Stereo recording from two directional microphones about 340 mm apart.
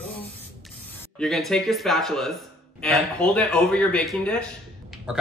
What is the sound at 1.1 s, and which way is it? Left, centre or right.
Speech, centre.